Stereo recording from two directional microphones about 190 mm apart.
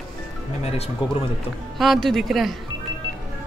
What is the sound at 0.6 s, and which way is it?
Speech, 35° left (ahead or behind).